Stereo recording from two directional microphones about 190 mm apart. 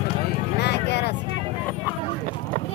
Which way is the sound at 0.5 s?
60° left (ahead or behind).